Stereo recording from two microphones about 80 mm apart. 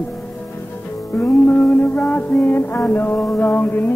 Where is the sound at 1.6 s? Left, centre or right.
Centre.